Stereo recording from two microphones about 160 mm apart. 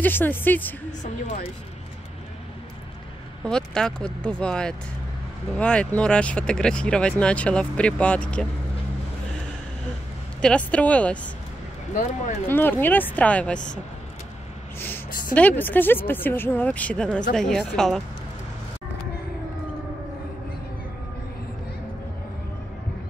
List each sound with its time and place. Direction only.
0.0 s speech: 10° left (ahead or behind)
3.4 s speech: 5° left (ahead or behind)
10.4 s speech: 5° left (ahead or behind)
11.9 s speech: 50° left (ahead or behind)
12.4 s speech: 15° left (ahead or behind)
15.3 s speech: 10° left (ahead or behind)